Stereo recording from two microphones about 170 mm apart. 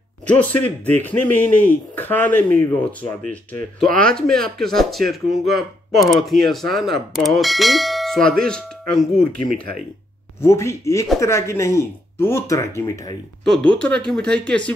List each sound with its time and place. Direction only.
0.3 s a man's voice: 10° left (ahead or behind)
10.4 s a man's voice: 15° left (ahead or behind)
13.4 s speech: centre (ahead or behind)